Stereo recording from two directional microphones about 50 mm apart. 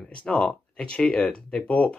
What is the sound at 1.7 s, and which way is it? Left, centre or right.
Speech, left.